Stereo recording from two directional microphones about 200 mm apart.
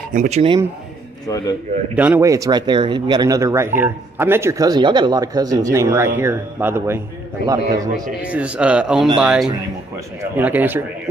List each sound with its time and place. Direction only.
0.1 s speech: 35° right (ahead or behind)
1.2 s speech: 20° left (ahead or behind)
2.0 s speech: 10° right (ahead or behind)
8.2 s speech: 5° right (ahead or behind)